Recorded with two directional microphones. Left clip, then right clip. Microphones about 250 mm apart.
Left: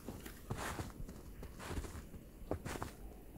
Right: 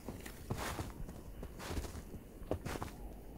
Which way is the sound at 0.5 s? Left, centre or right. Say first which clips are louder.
Right 1 dB; centre.